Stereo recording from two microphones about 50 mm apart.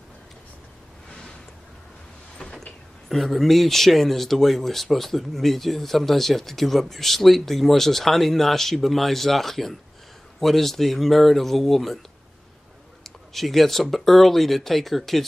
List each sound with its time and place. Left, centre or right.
3.1 s speech: centre
13.0 s speech: centre